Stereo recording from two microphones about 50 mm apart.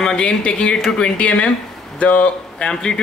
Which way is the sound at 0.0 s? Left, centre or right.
Centre.